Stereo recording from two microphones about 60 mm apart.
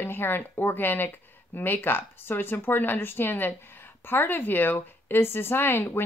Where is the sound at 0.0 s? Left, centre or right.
Left.